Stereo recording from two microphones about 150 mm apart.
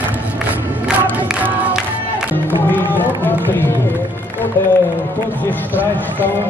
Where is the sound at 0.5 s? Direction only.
10° right (ahead or behind).